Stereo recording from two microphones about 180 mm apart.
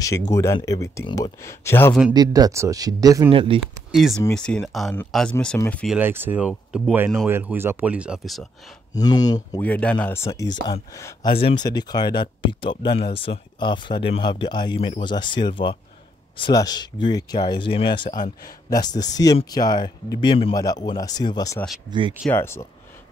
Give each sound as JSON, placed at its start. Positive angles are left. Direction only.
{"t": 0.3, "sound": "speech", "side_deg": 15}
{"t": 2.1, "sound": "speech", "side_deg": -20}
{"t": 3.3, "sound": "speech", "side_deg": -30}
{"t": 3.9, "sound": "speech", "side_deg": 0}
{"t": 5.9, "sound": "speech", "side_deg": -10}
{"t": 8.9, "sound": "speech", "side_deg": 20}
{"t": 9.6, "sound": "speech", "side_deg": 10}